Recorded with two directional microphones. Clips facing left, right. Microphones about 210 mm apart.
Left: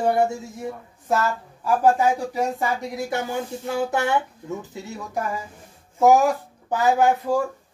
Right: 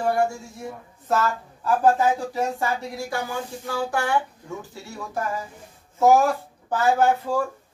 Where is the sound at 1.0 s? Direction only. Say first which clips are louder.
Even; 10° left (ahead or behind).